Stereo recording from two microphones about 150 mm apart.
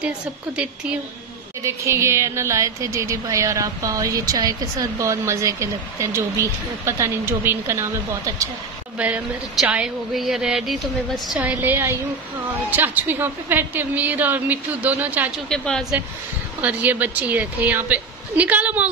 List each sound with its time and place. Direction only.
1.6 s a woman's voice: 20° right (ahead or behind)
8.9 s a woman's voice: 10° right (ahead or behind)
15.5 s speech: 5° left (ahead or behind)
16.6 s a woman's voice: 10° right (ahead or behind)